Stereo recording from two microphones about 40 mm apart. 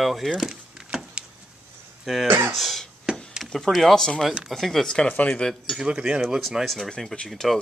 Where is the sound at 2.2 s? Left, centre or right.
Right.